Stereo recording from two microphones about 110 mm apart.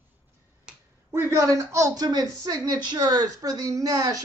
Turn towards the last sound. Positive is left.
turn(degrees=-35)  # may be behind; listen again after turning